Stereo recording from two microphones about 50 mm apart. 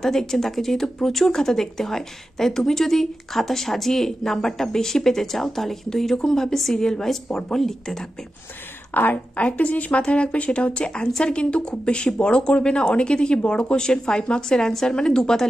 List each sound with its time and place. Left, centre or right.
0.0 s speech: centre
8.9 s speech: left
9.4 s speech: left